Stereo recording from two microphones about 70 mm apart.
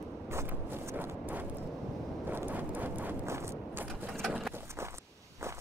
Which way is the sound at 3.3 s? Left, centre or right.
Right.